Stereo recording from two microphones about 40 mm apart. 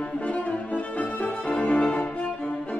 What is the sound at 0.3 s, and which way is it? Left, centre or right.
Music, left.